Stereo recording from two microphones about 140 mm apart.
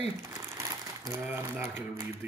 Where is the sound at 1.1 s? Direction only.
15° right (ahead or behind).